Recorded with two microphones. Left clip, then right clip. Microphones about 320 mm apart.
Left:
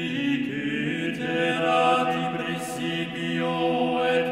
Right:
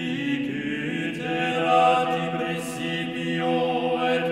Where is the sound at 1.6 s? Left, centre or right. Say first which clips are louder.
Right 3 dB; left.